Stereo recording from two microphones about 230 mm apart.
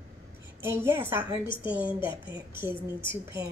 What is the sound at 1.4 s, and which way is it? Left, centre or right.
Speech, left.